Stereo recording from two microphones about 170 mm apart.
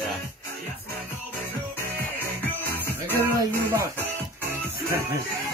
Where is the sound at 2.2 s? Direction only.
10° left (ahead or behind).